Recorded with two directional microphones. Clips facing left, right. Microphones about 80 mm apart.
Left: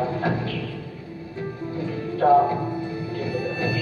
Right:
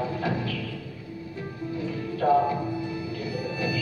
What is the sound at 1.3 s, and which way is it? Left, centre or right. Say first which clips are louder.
Music: left 4 dB; left.